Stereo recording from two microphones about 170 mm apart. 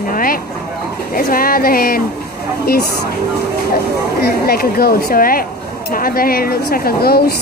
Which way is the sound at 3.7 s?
65° left (ahead or behind).